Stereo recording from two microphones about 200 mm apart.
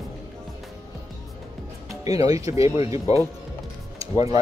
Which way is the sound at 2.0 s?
20° right (ahead or behind).